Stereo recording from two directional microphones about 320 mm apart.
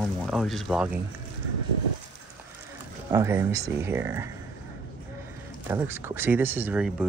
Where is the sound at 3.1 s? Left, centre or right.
Centre.